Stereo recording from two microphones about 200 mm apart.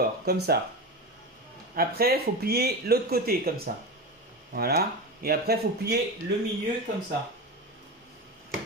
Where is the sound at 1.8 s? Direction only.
50° right (ahead or behind).